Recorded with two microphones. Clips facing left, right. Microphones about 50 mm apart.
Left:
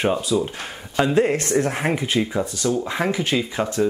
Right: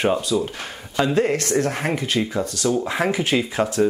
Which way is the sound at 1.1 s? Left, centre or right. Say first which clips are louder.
Left 1 dB; centre.